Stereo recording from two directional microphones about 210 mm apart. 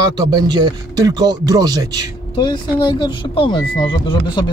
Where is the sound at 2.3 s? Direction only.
20° left (ahead or behind).